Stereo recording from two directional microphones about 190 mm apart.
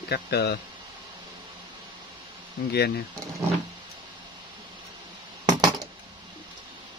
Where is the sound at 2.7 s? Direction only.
60° left (ahead or behind).